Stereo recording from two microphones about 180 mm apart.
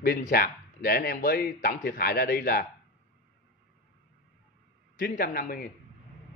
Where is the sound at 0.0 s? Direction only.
55° left (ahead or behind).